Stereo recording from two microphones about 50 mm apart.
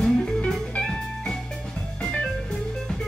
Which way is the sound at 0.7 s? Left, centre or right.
Left.